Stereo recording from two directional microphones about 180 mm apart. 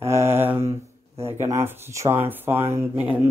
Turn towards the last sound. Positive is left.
turn(degrees=-15)  # may be behind; listen again after turning